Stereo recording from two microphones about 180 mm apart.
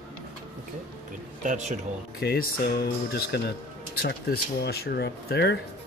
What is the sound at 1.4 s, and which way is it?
Speech, 45° right (ahead or behind).